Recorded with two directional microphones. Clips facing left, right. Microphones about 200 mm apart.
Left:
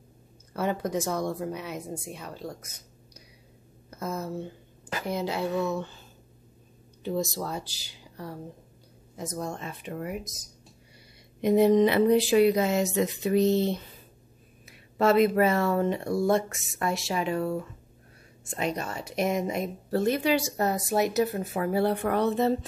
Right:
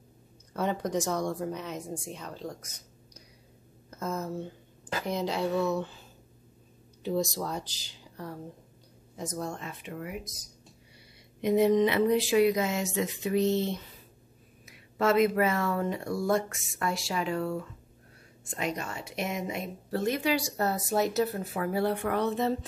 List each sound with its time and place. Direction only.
0.5 s a woman's voice: 5° left (ahead or behind)
3.9 s a woman's voice: 10° left (ahead or behind)
9.5 s speech: 30° left (ahead or behind); by 10.5 s 45° left (ahead or behind)
11.4 s speech: 35° left (ahead or behind); by 21.5 s 15° left (ahead or behind)
21.5 s speech: 30° left (ahead or behind)